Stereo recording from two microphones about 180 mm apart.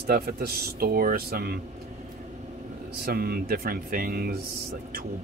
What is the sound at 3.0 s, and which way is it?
Speech, 55° right (ahead or behind).